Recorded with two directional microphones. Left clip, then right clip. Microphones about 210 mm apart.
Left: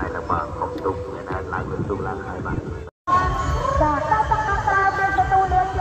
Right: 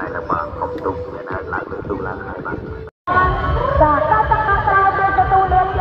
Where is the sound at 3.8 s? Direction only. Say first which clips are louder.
Right 7 dB; 25° left (ahead or behind).